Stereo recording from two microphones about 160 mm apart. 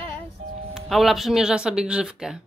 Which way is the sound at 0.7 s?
Centre (ahead or behind).